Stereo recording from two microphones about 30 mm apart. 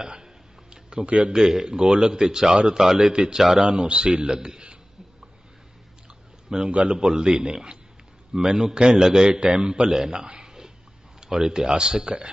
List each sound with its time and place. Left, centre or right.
0.0 s speech: right
1.5 s a man's voice: right
6.7 s speech: right
7.0 s a man's voice: right
9.3 s speech: right
9.8 s a man's voice: centre
10.1 s a sound: right
11.1 s a man's voice: centre